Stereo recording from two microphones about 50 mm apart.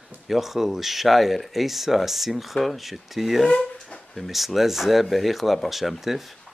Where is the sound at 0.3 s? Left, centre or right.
Centre.